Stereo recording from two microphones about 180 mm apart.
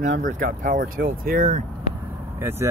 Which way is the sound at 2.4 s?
10° right (ahead or behind).